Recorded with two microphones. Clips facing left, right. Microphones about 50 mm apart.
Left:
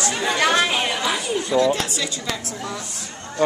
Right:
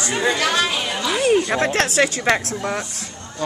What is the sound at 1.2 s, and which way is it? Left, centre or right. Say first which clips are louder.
Speech: right 4 dB; right.